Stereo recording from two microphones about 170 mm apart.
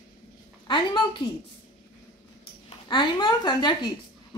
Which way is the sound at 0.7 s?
30° left (ahead or behind).